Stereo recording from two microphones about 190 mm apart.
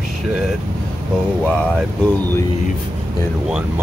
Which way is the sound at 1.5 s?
5° left (ahead or behind).